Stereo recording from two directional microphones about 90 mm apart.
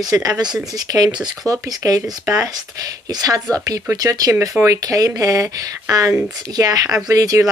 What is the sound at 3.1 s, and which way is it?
Speech, 40° right (ahead or behind).